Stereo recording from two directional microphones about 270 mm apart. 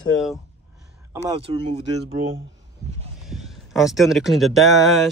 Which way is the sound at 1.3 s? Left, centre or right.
Centre.